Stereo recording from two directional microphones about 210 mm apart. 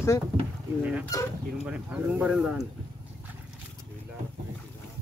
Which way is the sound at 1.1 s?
15° left (ahead or behind).